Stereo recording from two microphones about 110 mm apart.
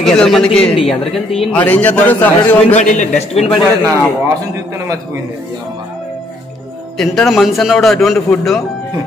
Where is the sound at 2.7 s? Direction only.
90° left.